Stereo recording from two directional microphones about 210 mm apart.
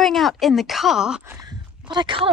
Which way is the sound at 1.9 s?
20° right (ahead or behind).